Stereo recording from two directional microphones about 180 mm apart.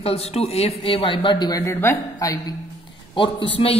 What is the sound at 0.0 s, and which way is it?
A man's voice, 35° left (ahead or behind).